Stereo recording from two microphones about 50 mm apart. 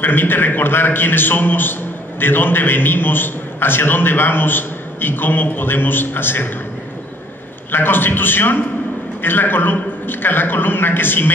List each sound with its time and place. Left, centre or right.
0.0 s a man's voice: left
7.7 s a man's voice: left